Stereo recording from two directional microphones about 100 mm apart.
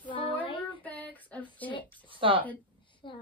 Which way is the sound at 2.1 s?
60° right (ahead or behind).